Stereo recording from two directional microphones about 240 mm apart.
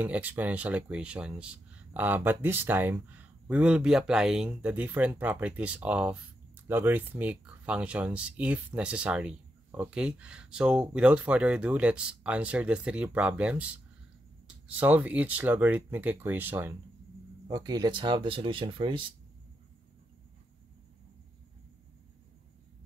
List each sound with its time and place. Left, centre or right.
0.0 s speech: centre
14.8 s speech: centre